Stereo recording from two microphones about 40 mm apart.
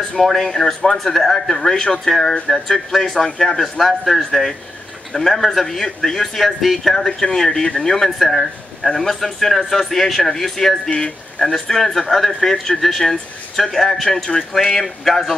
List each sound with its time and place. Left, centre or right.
0.2 s speech: centre
1.6 s speech: centre
10.9 s speech: left
11.4 s speech: centre